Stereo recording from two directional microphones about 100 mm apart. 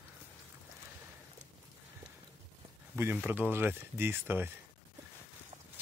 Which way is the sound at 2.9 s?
20° right (ahead or behind).